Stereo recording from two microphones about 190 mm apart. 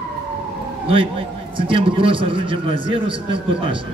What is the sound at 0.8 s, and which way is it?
A man's voice, 30° right (ahead or behind).